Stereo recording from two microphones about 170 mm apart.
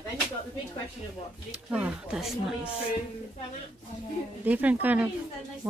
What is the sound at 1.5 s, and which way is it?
A woman's voice, 10° right (ahead or behind).